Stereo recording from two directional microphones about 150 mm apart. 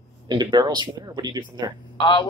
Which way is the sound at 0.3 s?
30° right (ahead or behind).